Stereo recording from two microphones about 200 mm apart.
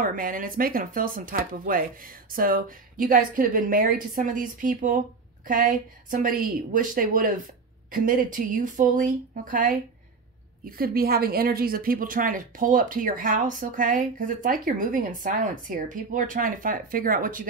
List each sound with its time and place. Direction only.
0.0 s a woman's voice: 45° right (ahead or behind)